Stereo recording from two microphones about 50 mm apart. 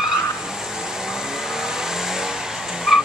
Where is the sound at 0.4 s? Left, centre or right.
Centre.